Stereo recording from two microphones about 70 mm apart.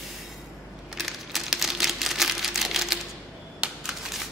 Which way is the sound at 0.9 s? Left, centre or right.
Centre.